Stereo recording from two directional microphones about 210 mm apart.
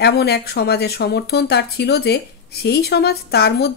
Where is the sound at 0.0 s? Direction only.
50° left (ahead or behind).